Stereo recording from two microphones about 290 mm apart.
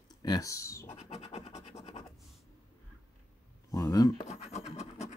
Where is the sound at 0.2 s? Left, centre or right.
Centre.